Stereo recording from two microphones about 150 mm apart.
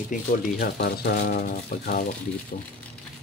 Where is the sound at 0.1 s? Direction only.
85° left.